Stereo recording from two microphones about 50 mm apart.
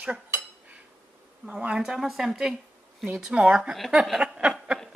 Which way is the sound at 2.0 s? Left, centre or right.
Centre.